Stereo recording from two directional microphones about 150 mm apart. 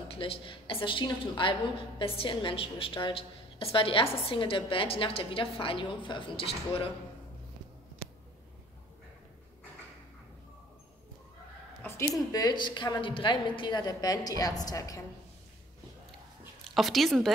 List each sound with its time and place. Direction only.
0.1 s a woman's voice: 35° left (ahead or behind)
11.8 s speech: 20° left (ahead or behind)
16.7 s speech: centre (ahead or behind)